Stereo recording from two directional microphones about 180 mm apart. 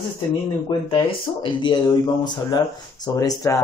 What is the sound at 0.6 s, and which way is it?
Speech, 30° left (ahead or behind).